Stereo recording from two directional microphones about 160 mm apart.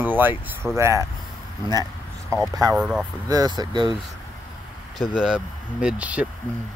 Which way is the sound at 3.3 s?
25° right (ahead or behind).